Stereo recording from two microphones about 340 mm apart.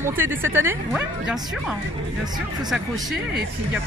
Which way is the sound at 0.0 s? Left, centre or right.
Centre.